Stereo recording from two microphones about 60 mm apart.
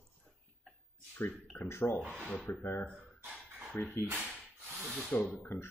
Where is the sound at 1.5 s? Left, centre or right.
Left.